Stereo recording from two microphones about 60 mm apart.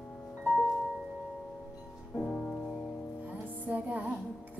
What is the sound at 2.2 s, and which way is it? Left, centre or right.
Music, left.